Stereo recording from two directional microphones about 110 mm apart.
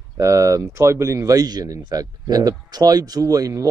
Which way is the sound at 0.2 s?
30° right (ahead or behind).